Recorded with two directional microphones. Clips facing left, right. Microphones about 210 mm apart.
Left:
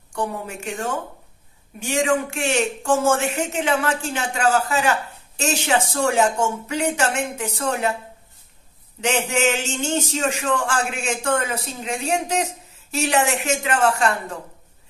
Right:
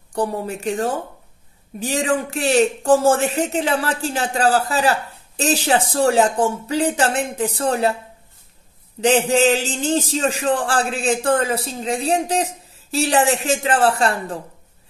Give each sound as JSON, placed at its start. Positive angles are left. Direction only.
{"t": 0.1, "sound": "speech", "side_deg": -35}
{"t": 9.0, "sound": "speech", "side_deg": -35}